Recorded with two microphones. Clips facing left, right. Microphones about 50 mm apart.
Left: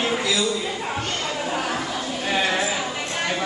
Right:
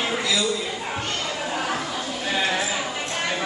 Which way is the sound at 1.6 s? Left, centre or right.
Centre.